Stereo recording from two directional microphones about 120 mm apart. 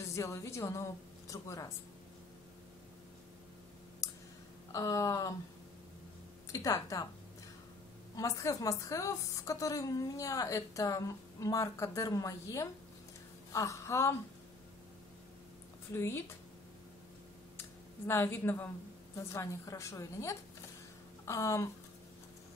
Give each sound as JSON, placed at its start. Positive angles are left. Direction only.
{"t": 0.1, "sound": "a woman's voice", "side_deg": 25}
{"t": 4.0, "sound": "clicking", "side_deg": 25}
{"t": 4.7, "sound": "a woman's voice", "side_deg": 30}
{"t": 6.5, "sound": "speech", "side_deg": 30}
{"t": 8.2, "sound": "a woman's voice", "side_deg": 25}
{"t": 13.5, "sound": "a sound", "side_deg": 25}
{"t": 15.9, "sound": "a woman's voice", "side_deg": 20}
{"t": 17.6, "sound": "a sound", "side_deg": 20}
{"t": 19.1, "sound": "a woman's voice", "side_deg": 25}